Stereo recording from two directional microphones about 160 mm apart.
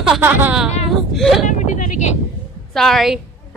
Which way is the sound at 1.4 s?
50° left (ahead or behind).